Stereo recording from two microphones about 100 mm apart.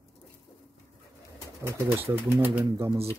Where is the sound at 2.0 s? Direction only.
20° right (ahead or behind).